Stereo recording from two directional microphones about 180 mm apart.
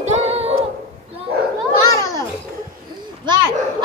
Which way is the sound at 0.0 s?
35° right (ahead or behind).